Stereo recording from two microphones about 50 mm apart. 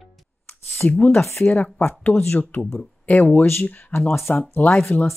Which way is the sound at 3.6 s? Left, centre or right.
Left.